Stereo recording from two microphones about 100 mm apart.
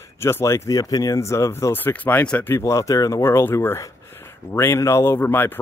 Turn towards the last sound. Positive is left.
turn(degrees=20)  # may be behind; listen again after turning